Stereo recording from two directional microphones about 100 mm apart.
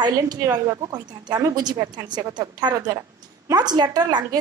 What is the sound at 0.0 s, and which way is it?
A woman's voice, 40° right (ahead or behind).